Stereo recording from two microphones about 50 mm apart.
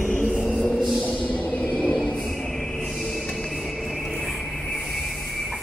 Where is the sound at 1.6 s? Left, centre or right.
Centre.